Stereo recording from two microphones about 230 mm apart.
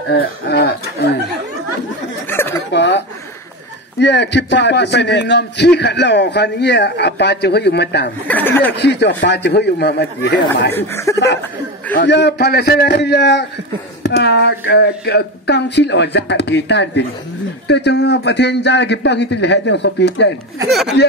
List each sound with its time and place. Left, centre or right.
0.1 s a man's voice: left
2.2 s a sound: centre
2.7 s a man's voice: left
4.0 s a man's voice: left
8.3 s speech: centre
8.7 s a man's voice: left
10.7 s speech: centre
11.9 s a man's voice: left